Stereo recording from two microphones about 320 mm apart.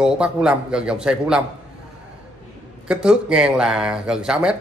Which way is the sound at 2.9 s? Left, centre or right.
Centre.